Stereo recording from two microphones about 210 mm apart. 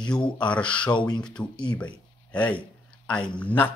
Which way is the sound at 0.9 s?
20° left (ahead or behind).